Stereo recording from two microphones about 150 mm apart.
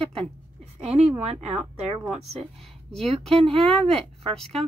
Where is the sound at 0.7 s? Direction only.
45° right (ahead or behind).